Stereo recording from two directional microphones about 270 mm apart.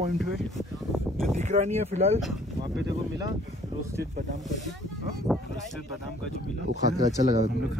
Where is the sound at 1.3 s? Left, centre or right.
Right.